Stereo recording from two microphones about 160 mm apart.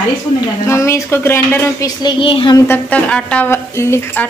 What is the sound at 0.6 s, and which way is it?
Speech, 15° left (ahead or behind).